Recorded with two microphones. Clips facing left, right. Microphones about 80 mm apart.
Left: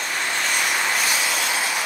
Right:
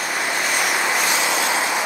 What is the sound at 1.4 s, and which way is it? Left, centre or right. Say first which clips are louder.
Vehicle: right 4 dB; centre.